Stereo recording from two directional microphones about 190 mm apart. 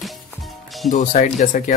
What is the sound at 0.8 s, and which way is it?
Speech, 40° left (ahead or behind).